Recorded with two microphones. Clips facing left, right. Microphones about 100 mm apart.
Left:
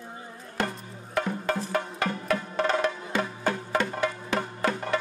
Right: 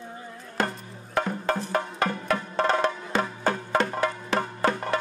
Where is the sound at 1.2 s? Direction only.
40° right (ahead or behind).